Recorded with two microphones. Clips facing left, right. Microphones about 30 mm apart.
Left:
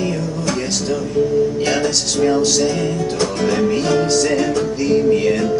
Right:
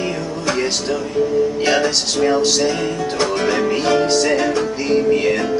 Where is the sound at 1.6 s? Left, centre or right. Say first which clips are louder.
Right 1 dB; centre.